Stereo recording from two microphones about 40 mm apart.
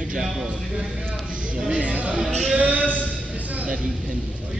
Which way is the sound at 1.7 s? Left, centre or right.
Right.